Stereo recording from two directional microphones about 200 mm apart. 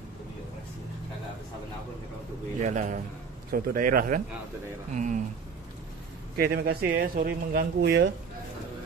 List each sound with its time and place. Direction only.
2.6 s a man's voice: 35° right (ahead or behind)
6.3 s speech: 50° right (ahead or behind)